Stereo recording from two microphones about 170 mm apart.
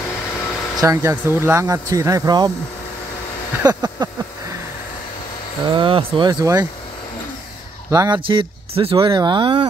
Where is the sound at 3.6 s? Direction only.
25° right (ahead or behind).